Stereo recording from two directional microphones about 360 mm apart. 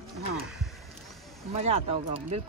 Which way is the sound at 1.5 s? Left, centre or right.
Centre.